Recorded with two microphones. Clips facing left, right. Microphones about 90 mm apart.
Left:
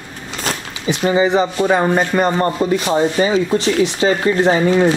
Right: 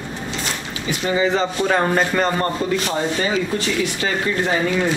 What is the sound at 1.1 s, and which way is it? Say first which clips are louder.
Speech: left 4 dB; 20° left (ahead or behind).